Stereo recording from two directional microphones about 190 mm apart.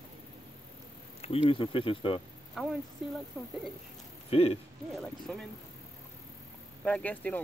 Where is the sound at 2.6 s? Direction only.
Centre (ahead or behind).